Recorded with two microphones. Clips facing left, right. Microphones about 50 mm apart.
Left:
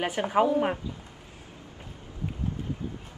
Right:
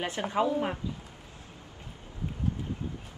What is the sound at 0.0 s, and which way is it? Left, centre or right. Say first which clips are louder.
Speech: left 4 dB; left.